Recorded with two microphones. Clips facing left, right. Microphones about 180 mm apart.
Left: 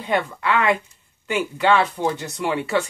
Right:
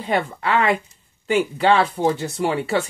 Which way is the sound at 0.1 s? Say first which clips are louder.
Right 1 dB; 30° right (ahead or behind).